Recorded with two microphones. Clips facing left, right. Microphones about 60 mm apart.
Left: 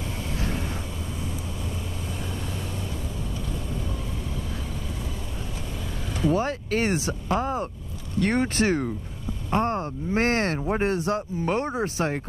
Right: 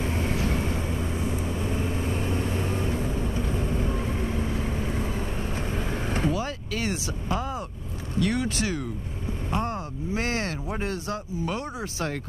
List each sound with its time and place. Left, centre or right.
6.3 s speech: left
10.7 s speech: left